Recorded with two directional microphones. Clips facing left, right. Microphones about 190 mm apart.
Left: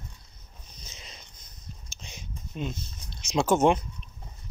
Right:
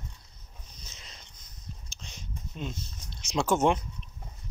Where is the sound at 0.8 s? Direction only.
15° left (ahead or behind).